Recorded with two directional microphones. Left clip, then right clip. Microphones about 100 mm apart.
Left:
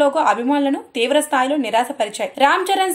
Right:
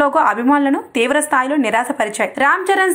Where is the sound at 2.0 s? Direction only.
45° left (ahead or behind).